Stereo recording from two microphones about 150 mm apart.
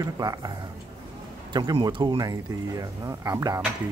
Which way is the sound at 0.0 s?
25° right (ahead or behind).